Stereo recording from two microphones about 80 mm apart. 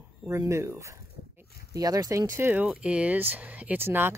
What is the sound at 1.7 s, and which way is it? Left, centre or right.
Speech, right.